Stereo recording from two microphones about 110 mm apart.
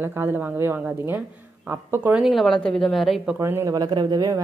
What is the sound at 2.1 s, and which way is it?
A woman's voice, centre (ahead or behind).